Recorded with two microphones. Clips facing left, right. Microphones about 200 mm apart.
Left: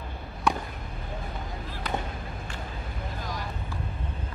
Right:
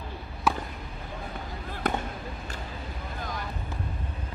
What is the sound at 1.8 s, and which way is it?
Fireworks, 50° right (ahead or behind).